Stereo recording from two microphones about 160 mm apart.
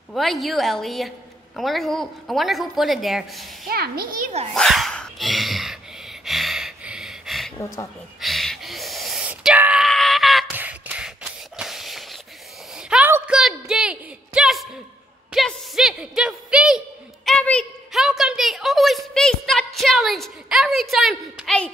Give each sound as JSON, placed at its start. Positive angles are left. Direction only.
{"t": 0.1, "sound": "speech", "side_deg": 0}
{"t": 3.6, "sound": "a child's voice", "side_deg": -70}
{"t": 4.6, "sound": "a sound", "side_deg": 0}
{"t": 6.2, "sound": "gasp", "side_deg": 0}
{"t": 8.2, "sound": "wail", "side_deg": 0}
{"t": 10.5, "sound": "a sound", "side_deg": -10}